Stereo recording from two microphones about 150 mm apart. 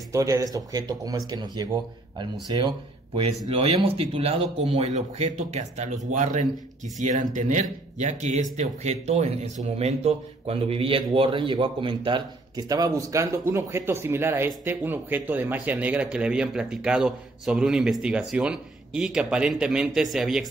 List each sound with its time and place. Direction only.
0.1 s speech: 20° right (ahead or behind)
3.4 s a man's voice: 40° right (ahead or behind); by 20.4 s centre (ahead or behind)